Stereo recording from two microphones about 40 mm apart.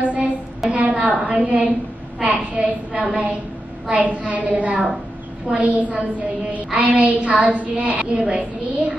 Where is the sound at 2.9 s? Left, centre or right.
Centre.